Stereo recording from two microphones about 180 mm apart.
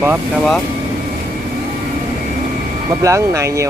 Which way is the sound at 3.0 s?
15° right (ahead or behind).